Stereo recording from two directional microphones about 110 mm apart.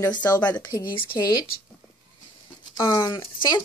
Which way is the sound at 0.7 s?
35° left (ahead or behind).